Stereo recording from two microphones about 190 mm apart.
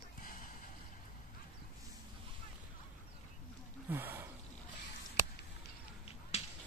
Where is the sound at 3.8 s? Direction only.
10° right (ahead or behind).